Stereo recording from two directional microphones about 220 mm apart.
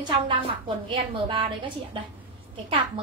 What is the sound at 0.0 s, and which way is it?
A woman's voice, 20° right (ahead or behind).